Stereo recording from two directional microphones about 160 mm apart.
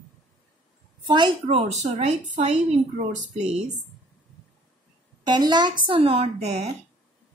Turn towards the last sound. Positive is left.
turn(degrees=-40)  # may be behind; listen again after turning